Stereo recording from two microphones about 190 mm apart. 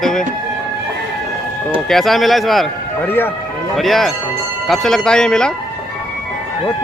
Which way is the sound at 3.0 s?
10° left (ahead or behind).